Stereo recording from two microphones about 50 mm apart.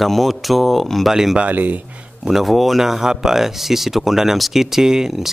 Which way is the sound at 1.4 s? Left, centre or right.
Right.